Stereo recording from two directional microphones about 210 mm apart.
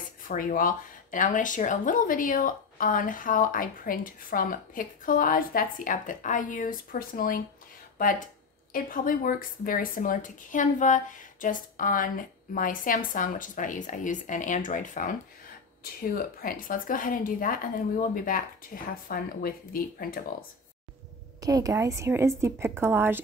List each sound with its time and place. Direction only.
0.2 s speech: 40° left (ahead or behind)
21.4 s a woman's voice: 15° right (ahead or behind)